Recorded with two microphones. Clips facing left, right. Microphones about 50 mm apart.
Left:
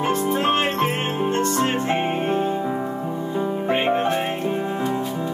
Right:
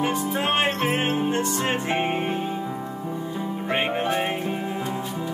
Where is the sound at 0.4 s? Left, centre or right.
Centre.